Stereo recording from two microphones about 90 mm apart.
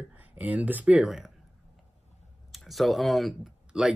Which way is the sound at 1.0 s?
5° right (ahead or behind).